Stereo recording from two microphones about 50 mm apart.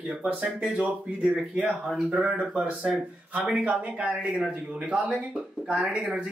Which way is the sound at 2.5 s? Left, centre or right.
Right.